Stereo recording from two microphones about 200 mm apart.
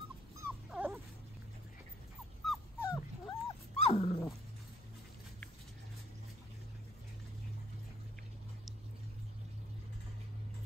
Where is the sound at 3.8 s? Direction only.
30° left (ahead or behind).